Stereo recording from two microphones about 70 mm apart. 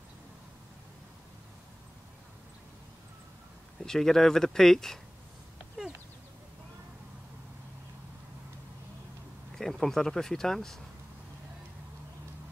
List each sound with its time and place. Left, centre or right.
3.8 s speech: centre
9.6 s speech: centre